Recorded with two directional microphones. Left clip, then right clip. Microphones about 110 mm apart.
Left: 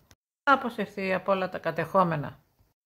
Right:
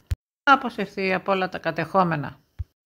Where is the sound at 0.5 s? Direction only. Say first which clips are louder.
Right 5 dB; 25° right (ahead or behind).